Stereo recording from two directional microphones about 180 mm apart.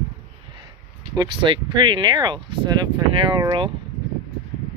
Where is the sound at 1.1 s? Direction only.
25° right (ahead or behind).